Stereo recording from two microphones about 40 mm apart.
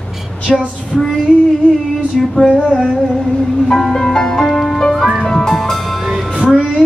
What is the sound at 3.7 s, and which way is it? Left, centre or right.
Music, centre.